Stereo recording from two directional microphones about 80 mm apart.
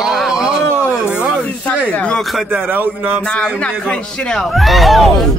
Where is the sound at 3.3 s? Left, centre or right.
Centre.